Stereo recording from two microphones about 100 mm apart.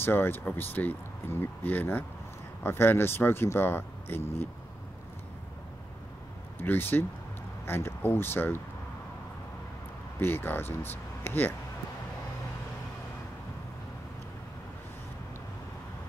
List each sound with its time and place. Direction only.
0.0 s speech: 20° left (ahead or behind)
6.6 s speech: 20° left (ahead or behind)
10.1 s speech: 20° left (ahead or behind)